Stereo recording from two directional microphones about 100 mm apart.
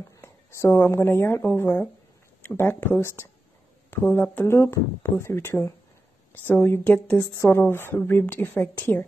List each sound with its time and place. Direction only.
0.2 s speech: 30° left (ahead or behind)